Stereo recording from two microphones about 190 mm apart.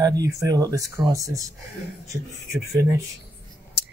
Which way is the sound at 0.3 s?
15° right (ahead or behind).